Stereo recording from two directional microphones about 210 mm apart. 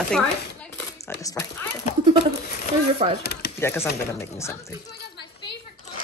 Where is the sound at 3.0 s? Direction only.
30° right (ahead or behind).